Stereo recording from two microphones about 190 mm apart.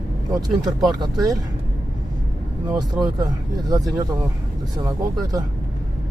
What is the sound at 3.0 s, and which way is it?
Speech, 20° right (ahead or behind).